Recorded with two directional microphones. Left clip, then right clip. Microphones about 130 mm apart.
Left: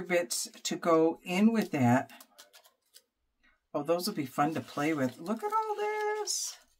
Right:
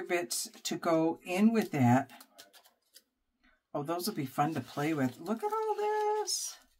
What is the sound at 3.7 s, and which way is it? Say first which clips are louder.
Speech: left 4 dB; 40° left (ahead or behind).